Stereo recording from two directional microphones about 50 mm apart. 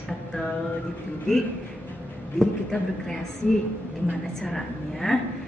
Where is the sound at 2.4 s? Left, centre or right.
Centre.